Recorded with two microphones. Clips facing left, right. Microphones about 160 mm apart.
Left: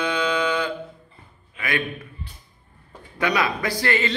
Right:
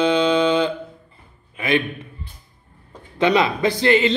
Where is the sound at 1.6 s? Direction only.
25° right (ahead or behind).